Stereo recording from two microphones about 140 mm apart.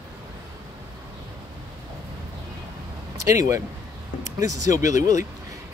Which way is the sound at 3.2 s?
25° right (ahead or behind).